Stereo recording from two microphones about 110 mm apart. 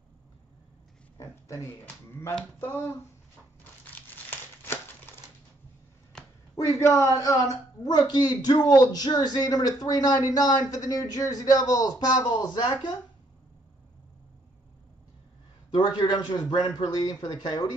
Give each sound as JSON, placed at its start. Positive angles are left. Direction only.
{"t": 1.1, "sound": "speech", "side_deg": 25}
{"t": 4.3, "sound": "crumpling", "side_deg": 20}
{"t": 6.1, "sound": "a sound", "side_deg": 5}
{"t": 6.7, "sound": "speech", "side_deg": 30}
{"t": 15.7, "sound": "speech", "side_deg": 45}